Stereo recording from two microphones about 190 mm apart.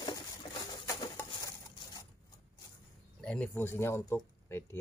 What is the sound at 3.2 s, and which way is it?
Speech, 5° left (ahead or behind).